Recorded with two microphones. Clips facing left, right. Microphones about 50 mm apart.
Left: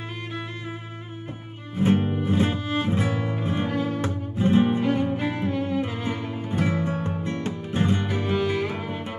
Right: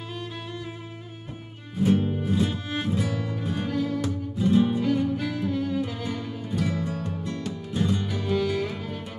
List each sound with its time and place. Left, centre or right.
1.8 s music: left